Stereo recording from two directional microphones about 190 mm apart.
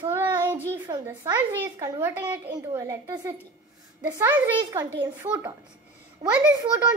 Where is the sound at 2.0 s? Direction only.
10° right (ahead or behind).